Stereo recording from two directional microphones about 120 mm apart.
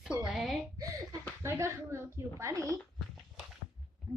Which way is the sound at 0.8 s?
30° right (ahead or behind).